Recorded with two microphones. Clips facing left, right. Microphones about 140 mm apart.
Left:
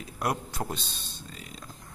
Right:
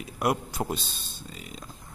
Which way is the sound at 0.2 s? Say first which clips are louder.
Right 4 dB; 5° right (ahead or behind).